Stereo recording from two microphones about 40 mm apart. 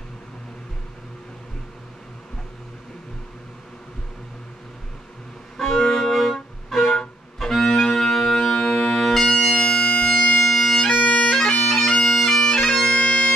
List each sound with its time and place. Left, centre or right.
5.6 s music: centre
8.9 s music: centre
9.7 s bagpipes: centre
10.4 s bagpipes: centre